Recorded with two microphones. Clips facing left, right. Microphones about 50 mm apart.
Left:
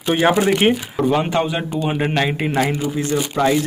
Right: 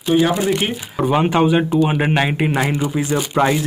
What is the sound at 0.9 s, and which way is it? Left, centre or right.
Speech, centre.